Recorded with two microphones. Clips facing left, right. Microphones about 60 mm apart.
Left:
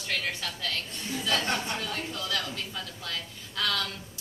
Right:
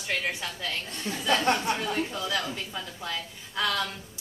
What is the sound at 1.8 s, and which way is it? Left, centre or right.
A woman's voice, centre.